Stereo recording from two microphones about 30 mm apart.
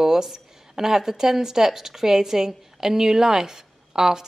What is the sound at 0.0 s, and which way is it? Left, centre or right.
A woman's voice, centre.